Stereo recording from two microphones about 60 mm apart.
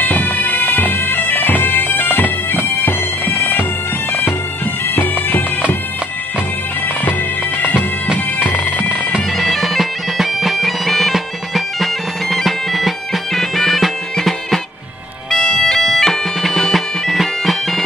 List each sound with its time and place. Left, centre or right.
0.0 s bagpipes: left
4.8 s bagpipes: left
8.1 s bagpipes: centre
9.4 s bagpipes: centre